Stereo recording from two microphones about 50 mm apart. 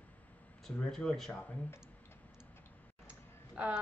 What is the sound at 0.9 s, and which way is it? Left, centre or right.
Speech, centre.